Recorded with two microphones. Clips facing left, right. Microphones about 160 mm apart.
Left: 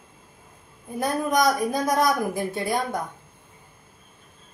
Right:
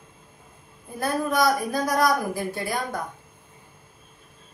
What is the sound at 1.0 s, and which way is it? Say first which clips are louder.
A woman's voice: left 1 dB; 20° left (ahead or behind).